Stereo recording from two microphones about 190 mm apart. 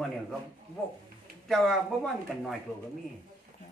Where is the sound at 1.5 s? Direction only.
Centre (ahead or behind).